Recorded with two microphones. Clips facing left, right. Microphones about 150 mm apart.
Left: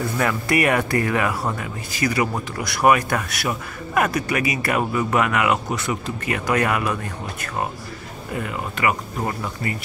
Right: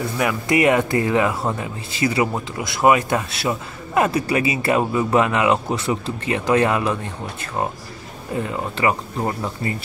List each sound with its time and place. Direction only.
0.2 s speech: 15° right (ahead or behind)
8.4 s speech: 30° right (ahead or behind)